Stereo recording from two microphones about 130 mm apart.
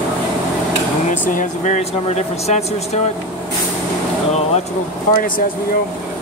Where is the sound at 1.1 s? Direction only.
85° left; by 2.6 s 60° left (ahead or behind).